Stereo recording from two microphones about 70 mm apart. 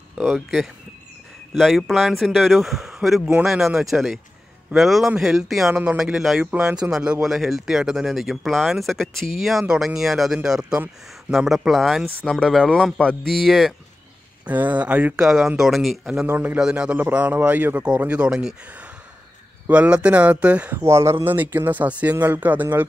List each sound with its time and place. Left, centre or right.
0.2 s speech: centre
14.4 s a man's voice: right
15.1 s speech: centre
16.1 s a man's voice: centre
19.7 s a man's voice: centre
20.7 s a man's voice: right